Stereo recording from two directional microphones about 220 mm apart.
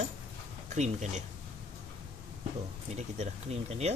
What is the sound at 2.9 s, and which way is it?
Speech, 30° right (ahead or behind).